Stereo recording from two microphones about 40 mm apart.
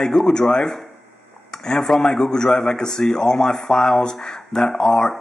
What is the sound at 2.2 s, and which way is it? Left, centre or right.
Speech, centre.